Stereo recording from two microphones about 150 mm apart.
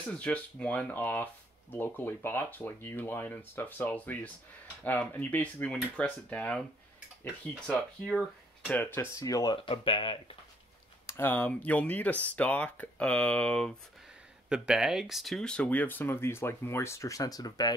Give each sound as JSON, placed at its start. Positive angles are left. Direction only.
{"t": 0.2, "sound": "speech", "side_deg": 10}
{"t": 7.6, "sound": "speech", "side_deg": 5}
{"t": 11.1, "sound": "speech", "side_deg": 15}
{"t": 14.5, "sound": "speech", "side_deg": -5}